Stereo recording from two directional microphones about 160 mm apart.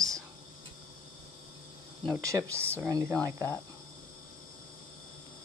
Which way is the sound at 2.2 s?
15° right (ahead or behind).